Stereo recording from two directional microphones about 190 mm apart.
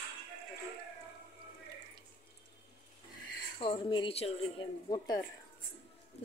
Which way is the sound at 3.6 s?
25° left (ahead or behind).